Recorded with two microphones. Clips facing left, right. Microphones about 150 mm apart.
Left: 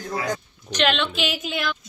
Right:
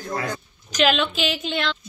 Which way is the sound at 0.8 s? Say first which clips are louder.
Right 2 dB; 5° right (ahead or behind).